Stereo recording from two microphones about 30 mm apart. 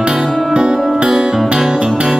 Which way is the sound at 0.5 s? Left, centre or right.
Right.